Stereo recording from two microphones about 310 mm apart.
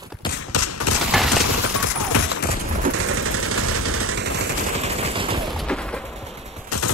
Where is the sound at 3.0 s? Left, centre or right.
Right.